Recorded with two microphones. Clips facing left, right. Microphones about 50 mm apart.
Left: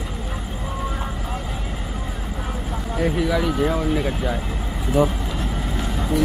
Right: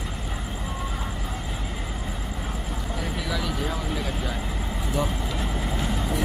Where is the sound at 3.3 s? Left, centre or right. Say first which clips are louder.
Left 8 dB; left.